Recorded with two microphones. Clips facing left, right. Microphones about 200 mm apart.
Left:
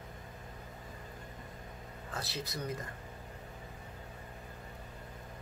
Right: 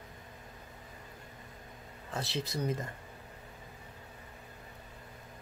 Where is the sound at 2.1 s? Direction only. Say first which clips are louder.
Right 5 dB; 25° right (ahead or behind).